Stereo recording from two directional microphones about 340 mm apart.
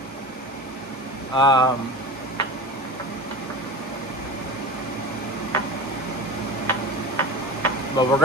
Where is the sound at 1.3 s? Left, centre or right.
Centre.